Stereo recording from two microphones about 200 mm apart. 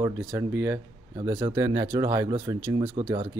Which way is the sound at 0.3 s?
10° right (ahead or behind).